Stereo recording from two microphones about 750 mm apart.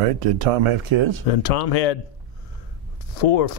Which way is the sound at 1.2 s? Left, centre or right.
Left.